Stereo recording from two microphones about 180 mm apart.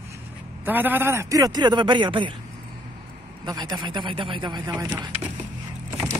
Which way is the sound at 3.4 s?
25° right (ahead or behind).